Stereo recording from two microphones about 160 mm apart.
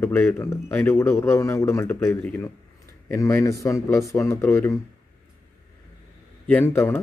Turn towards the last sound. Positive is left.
turn(degrees=15)  # may be behind; listen again after turning